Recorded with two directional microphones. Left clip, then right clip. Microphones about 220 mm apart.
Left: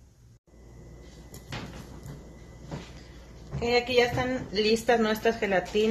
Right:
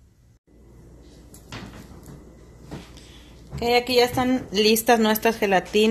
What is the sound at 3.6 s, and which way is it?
Speech, 50° right (ahead or behind).